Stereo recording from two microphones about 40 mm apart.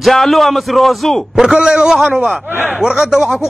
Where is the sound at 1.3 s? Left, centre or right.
Centre.